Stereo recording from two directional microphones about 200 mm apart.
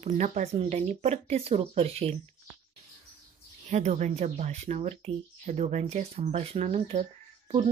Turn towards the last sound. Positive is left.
turn(degrees=-35)  # may be behind; listen again after turning